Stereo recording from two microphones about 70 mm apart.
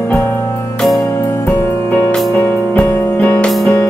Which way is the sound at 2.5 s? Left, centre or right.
Left.